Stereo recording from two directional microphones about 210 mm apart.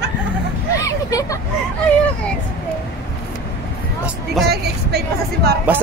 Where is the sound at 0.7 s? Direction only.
15° left (ahead or behind).